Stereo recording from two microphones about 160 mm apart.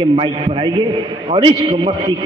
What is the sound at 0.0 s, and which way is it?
A man's voice, 30° right (ahead or behind).